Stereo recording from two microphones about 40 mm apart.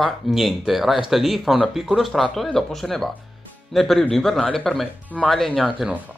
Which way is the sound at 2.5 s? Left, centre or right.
Centre.